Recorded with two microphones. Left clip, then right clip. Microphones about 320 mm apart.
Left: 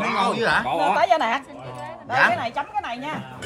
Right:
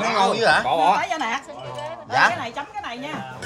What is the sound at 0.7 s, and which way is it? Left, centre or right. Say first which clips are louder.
Speech: right 3 dB; right.